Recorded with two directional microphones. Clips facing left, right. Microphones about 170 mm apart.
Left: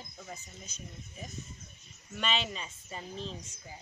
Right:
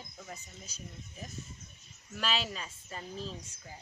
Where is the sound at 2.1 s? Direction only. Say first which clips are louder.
Left 1 dB; centre (ahead or behind).